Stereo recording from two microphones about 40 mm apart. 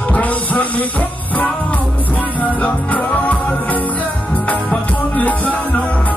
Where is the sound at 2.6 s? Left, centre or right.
Left.